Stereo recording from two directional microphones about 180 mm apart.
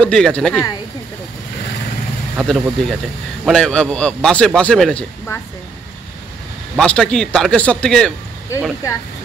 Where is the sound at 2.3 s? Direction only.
5° right (ahead or behind).